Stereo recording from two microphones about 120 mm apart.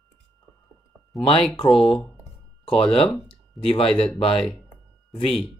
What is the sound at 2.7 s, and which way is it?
Speech, 50° left (ahead or behind).